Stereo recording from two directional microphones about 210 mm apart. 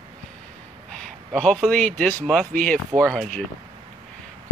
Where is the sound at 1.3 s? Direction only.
Centre (ahead or behind).